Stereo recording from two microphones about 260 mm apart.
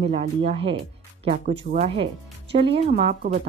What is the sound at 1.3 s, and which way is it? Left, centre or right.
Speech, right.